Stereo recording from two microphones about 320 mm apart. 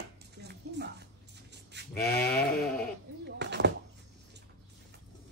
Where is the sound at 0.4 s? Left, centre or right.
Right.